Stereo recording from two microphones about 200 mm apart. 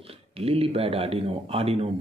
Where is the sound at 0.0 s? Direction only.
30° right (ahead or behind).